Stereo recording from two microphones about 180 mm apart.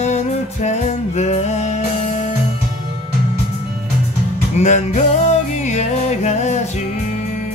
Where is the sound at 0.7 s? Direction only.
40° left (ahead or behind).